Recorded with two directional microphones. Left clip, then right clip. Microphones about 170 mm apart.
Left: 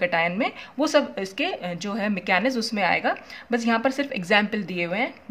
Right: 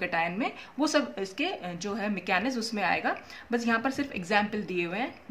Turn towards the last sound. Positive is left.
turn(degrees=35)  # may be behind; listen again after turning